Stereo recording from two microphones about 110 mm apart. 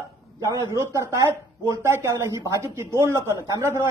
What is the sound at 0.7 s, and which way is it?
Speech, 25° right (ahead or behind).